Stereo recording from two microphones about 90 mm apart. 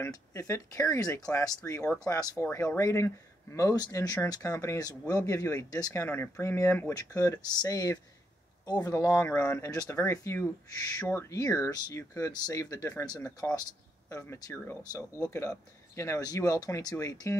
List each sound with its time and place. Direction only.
0.3 s speech: 30° left (ahead or behind)
2.4 s speech: 25° left (ahead or behind); by 5.9 s 45° left (ahead or behind)
6.1 s speech: 20° left (ahead or behind)
6.4 s speech: 30° left (ahead or behind)
6.9 s speech: 40° left (ahead or behind)
8.9 s speech: 35° left (ahead or behind)
11.3 s speech: 40° left (ahead or behind)
14.8 s speech: 40° left (ahead or behind)